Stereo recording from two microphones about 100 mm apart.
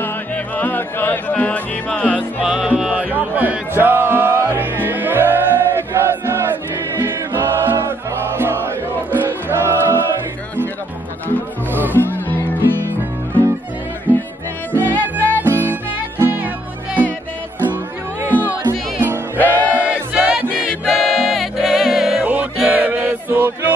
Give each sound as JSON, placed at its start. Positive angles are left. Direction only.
{"t": 0.6, "sound": "music", "side_deg": 20}
{"t": 2.4, "sound": "music", "side_deg": -5}
{"t": 11.9, "sound": "music", "side_deg": 20}
{"t": 14.1, "sound": "music", "side_deg": -20}
{"t": 14.7, "sound": "music", "side_deg": 20}
{"t": 15.4, "sound": "music", "side_deg": -20}
{"t": 18.3, "sound": "music", "side_deg": 20}
{"t": 19.8, "sound": "music", "side_deg": -10}
{"t": 22.2, "sound": "music", "side_deg": -15}